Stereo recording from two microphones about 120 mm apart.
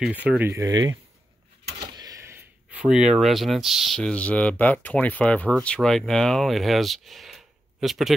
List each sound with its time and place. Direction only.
0.0 s speech: 10° right (ahead or behind)
0.5 s speech: 30° right (ahead or behind); by 8.1 s centre (ahead or behind)